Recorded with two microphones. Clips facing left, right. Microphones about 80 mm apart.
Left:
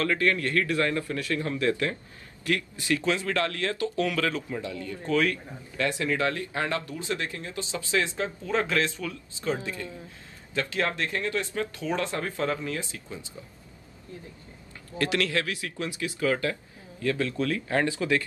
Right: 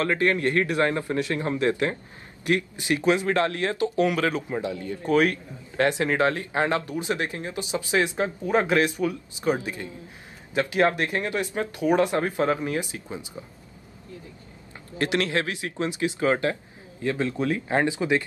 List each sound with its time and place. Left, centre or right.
0.0 s a man's voice: right
15.0 s speech: right